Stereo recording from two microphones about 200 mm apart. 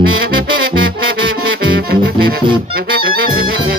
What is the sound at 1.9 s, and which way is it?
Music, 50° right (ahead or behind).